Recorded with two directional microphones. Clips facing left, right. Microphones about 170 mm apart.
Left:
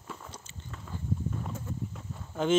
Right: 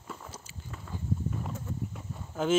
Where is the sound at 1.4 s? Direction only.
5° right (ahead or behind).